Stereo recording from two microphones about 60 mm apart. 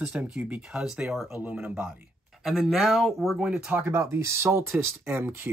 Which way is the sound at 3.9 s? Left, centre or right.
Right.